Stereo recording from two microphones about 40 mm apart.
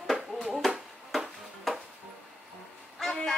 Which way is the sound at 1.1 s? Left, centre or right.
Centre.